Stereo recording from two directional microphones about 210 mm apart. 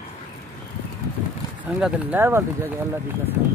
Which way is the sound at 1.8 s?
10° right (ahead or behind).